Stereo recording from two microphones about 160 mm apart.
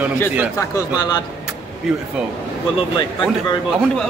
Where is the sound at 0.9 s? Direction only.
25° left (ahead or behind).